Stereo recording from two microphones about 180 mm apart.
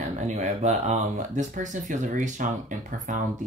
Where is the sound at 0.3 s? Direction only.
40° right (ahead or behind).